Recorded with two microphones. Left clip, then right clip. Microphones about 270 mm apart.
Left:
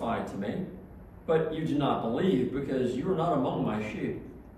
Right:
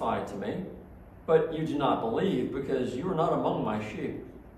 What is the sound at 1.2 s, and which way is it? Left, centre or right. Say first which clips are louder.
A man's voice: right 2 dB; centre.